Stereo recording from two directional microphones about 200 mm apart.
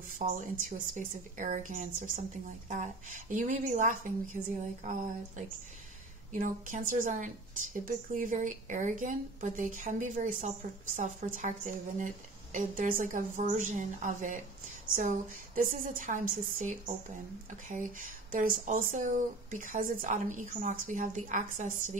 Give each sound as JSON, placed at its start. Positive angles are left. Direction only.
{"t": 0.2, "sound": "speech", "side_deg": -40}
{"t": 6.3, "sound": "a woman's voice", "side_deg": -40}